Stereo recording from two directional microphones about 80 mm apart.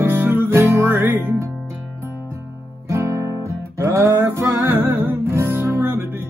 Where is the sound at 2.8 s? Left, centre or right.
Right.